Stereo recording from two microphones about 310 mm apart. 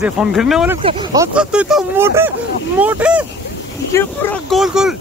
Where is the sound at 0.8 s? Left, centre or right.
Centre.